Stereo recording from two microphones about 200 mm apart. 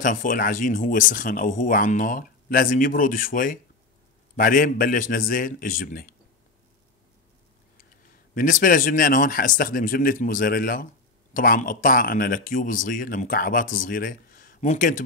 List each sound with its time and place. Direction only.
0.0 s speech: 40° left (ahead or behind)
7.7 s speech: 45° left (ahead or behind)